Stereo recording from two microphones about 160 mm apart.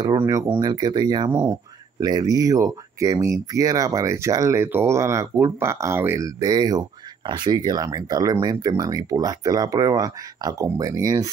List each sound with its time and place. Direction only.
0.3 s speech: 20° right (ahead or behind)